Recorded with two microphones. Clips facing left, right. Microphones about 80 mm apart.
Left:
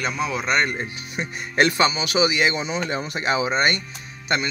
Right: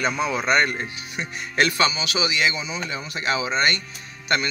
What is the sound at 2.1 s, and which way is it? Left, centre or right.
Speech, left.